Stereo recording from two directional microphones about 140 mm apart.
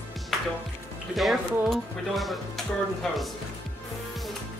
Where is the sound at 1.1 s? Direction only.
Centre (ahead or behind).